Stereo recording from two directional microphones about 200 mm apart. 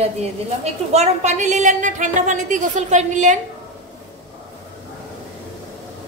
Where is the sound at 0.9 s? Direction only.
35° right (ahead or behind).